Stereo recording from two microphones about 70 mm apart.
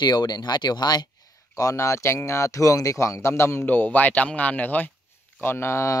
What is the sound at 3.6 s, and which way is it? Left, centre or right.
Speech, left.